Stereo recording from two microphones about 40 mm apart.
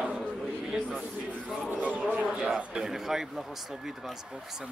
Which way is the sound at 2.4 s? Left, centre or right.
Centre.